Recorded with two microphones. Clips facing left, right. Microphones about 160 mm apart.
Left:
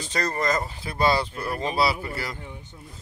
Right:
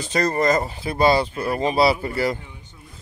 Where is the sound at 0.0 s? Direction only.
10° right (ahead or behind).